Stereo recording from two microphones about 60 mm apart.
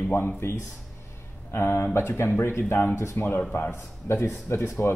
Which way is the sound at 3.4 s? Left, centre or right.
Left.